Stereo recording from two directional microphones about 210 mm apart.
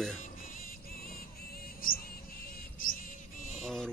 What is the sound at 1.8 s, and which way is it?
Music, 45° left (ahead or behind).